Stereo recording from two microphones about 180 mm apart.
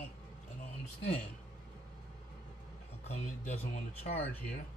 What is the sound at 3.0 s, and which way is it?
Speech, 40° left (ahead or behind).